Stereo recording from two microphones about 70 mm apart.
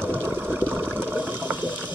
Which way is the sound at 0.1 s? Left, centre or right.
Right.